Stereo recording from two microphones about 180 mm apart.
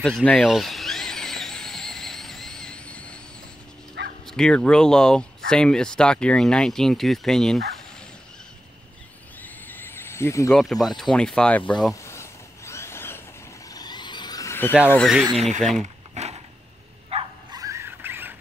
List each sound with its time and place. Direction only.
0.0 s a sound: 5° left (ahead or behind)
4.0 s bow-wow: 80° right
4.3 s speech: 5° left (ahead or behind)
9.4 s neigh: 10° left (ahead or behind)
10.5 s speech: centre (ahead or behind)
11.9 s a sound: 15° left (ahead or behind)
14.9 s speech: centre (ahead or behind)
15.8 s a sound: 40° right (ahead or behind)
17.1 s dog: 20° right (ahead or behind)